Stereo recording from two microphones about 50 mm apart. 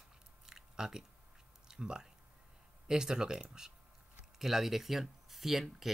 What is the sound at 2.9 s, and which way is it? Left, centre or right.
Speech, centre.